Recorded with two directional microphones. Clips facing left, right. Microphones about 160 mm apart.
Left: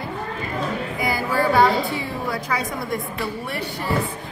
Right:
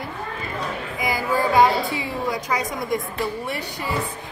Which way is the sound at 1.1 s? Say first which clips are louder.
Even; 20° right (ahead or behind).